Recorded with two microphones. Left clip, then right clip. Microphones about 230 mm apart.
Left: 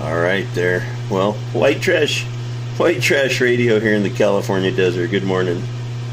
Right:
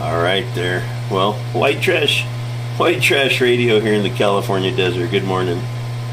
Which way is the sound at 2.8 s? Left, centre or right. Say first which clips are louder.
Right 1 dB; left.